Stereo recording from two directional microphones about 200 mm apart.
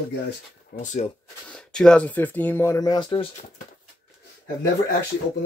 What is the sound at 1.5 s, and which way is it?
Speech, 5° left (ahead or behind).